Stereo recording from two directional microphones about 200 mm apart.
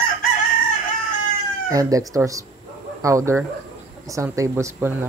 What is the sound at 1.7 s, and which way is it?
Speech, 15° right (ahead or behind).